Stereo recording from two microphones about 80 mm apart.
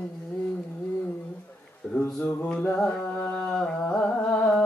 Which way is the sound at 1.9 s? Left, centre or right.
Left.